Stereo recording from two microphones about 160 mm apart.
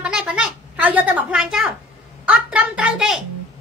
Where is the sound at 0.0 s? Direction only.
5° right (ahead or behind).